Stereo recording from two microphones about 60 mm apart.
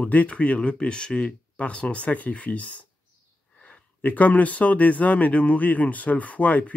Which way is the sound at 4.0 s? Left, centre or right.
Left.